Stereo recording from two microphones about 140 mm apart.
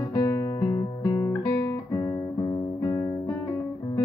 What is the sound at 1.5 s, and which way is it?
Guitar, 25° left (ahead or behind).